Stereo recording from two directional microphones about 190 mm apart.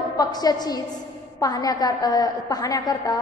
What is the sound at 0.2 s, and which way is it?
A woman's voice, 20° left (ahead or behind).